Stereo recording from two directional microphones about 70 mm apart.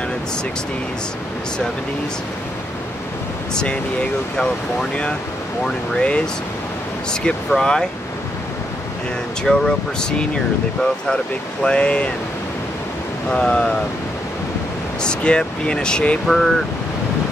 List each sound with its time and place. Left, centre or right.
5.9 s speech: centre
9.4 s speech: centre
13.3 s speech: centre
15.0 s speech: centre
16.3 s speech: centre